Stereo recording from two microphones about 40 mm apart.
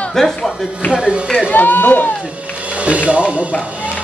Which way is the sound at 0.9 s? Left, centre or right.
Right.